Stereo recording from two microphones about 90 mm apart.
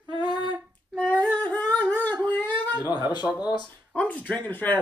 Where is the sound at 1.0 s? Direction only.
15° left (ahead or behind).